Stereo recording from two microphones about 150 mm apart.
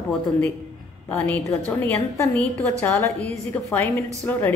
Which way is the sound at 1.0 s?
10° left (ahead or behind).